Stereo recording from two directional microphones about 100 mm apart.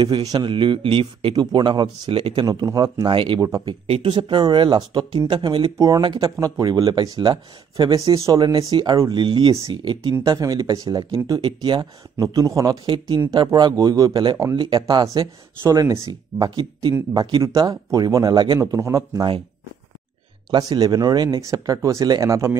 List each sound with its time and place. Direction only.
0.0 s speech: 45° right (ahead or behind)
0.5 s speech: 55° right (ahead or behind)
2.4 s speech: 40° right (ahead or behind)
3.3 s speech: 35° right (ahead or behind)
3.6 s speech: 65° right (ahead or behind)
5.8 s speech: 40° right (ahead or behind)
9.5 s speech: 40° right (ahead or behind)
11.4 s speech: 50° right (ahead or behind)
12.2 s speech: 35° right (ahead or behind)
12.8 s speech: 60° right (ahead or behind)
13.3 s speech: 45° right (ahead or behind)
14.8 s speech: 45° right (ahead or behind)
18.6 s speech: 30° right (ahead or behind)
20.5 s speech: 40° right (ahead or behind)